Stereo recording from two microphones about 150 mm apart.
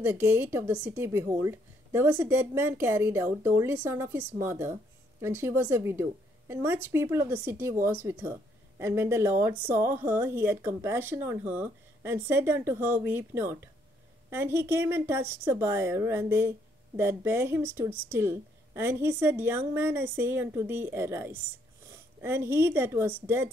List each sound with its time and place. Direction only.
0.0 s a woman's voice: 15° right (ahead or behind)